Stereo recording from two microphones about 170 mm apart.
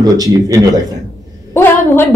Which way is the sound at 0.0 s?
20° right (ahead or behind).